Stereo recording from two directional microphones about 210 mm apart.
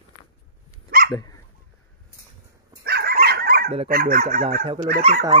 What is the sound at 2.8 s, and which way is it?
Dog, 50° right (ahead or behind).